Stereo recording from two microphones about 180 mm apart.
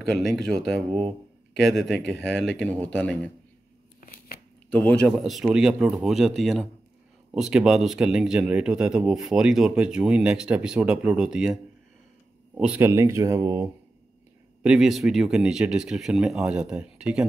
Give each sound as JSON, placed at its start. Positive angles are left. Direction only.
{"t": 0.0, "sound": "speech", "side_deg": 0}
{"t": 4.6, "sound": "speech", "side_deg": 5}
{"t": 14.6, "sound": "speech", "side_deg": -5}